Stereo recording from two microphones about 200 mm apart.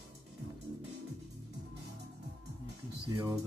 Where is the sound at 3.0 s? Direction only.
25° right (ahead or behind).